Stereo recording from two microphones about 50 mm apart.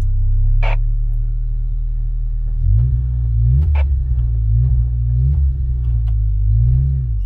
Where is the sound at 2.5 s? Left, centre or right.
Centre.